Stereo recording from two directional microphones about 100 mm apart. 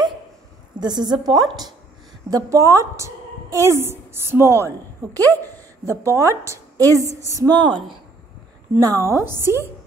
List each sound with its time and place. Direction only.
0.7 s a woman's voice: 45° right (ahead or behind)
7.5 s a woman's voice: 55° right (ahead or behind)
8.7 s a woman's voice: 30° right (ahead or behind)